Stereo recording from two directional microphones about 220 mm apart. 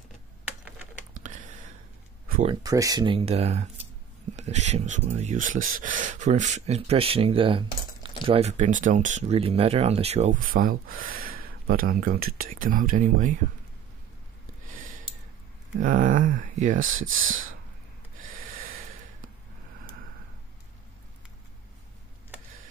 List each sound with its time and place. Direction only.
1.1 s a sound: 35° right (ahead or behind)
2.4 s speech: 20° right (ahead or behind); by 13.3 s 35° right (ahead or behind)
14.7 s a sound: 40° right (ahead or behind)
15.8 s speech: 40° right (ahead or behind)
16.9 s speech: 65° right (ahead or behind)
18.2 s snort: 40° right (ahead or behind)